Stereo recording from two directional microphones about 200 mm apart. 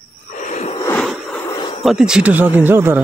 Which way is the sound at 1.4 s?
20° left (ahead or behind).